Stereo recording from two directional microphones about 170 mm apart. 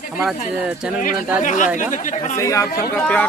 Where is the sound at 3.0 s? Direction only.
5° left (ahead or behind).